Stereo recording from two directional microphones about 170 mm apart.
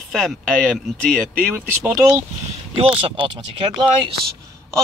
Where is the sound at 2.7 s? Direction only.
35° right (ahead or behind).